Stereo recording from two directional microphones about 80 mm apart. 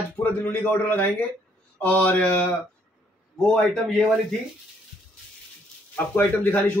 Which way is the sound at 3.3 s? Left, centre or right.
Centre.